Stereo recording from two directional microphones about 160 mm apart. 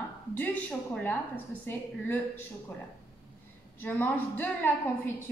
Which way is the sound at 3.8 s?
10° left (ahead or behind).